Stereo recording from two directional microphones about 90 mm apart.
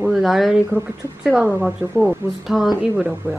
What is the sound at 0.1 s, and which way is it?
Speech, centre (ahead or behind).